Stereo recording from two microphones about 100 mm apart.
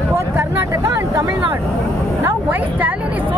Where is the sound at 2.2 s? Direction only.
20° right (ahead or behind).